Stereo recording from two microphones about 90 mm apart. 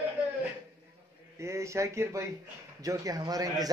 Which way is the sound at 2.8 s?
40° right (ahead or behind).